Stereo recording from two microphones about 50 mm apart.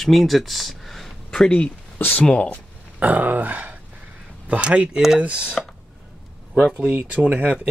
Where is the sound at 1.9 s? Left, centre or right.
Left.